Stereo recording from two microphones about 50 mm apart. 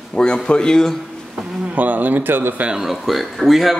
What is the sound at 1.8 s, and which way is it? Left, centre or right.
Speech, right.